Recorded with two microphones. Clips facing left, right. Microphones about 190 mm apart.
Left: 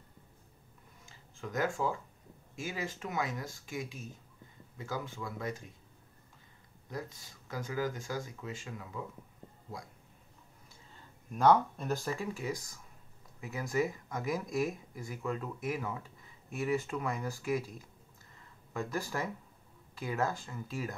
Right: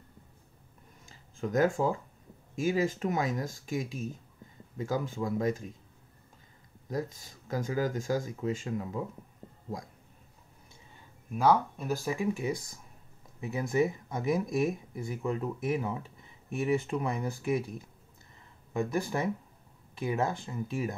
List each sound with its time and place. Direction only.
1.4 s speech: 45° right (ahead or behind)
4.8 s speech: 45° right (ahead or behind)
6.9 s speech: 45° right (ahead or behind)
11.3 s speech: 5° right (ahead or behind)